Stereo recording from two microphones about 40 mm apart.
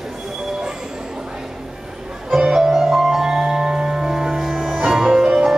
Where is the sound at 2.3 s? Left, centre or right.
Centre.